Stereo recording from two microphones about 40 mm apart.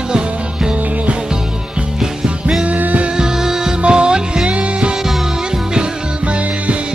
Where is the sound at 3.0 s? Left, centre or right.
Centre.